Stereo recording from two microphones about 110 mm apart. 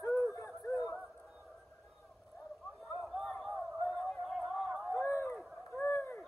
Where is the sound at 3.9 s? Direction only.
10° left (ahead or behind).